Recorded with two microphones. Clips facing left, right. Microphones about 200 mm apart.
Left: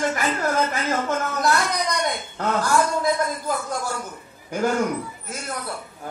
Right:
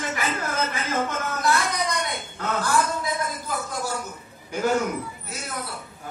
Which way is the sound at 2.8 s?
45° left (ahead or behind).